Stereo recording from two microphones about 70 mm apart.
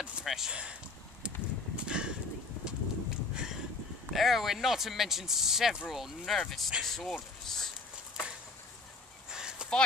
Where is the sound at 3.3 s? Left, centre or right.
Centre.